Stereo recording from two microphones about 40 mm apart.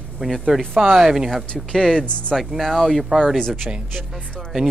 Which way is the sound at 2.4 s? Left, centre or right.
Centre.